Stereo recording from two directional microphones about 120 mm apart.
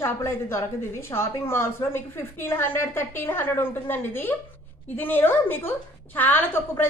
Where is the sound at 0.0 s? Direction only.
20° left (ahead or behind).